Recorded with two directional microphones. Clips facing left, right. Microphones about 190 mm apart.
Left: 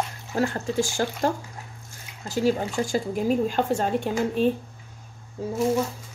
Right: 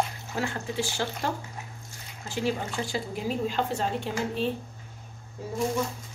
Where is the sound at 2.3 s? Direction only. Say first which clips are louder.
Left 6 dB; 45° left (ahead or behind).